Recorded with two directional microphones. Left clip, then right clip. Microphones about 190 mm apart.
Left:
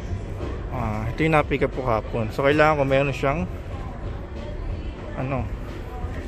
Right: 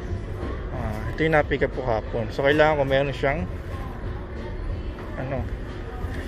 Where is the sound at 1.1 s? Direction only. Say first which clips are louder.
Even; 35° left (ahead or behind).